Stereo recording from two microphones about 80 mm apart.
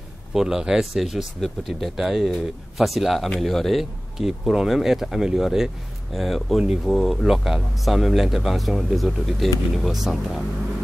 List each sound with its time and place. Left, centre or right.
0.3 s speech: centre